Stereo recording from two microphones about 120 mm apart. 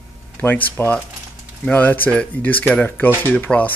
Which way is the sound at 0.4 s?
15° left (ahead or behind).